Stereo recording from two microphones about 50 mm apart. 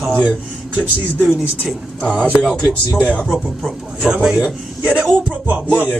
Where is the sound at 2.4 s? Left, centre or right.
Centre.